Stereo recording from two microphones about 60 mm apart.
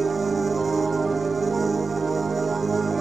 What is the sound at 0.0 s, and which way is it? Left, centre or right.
Music, centre.